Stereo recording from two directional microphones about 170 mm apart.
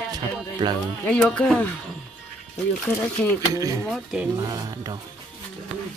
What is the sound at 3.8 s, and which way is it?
Speech, 5° right (ahead or behind).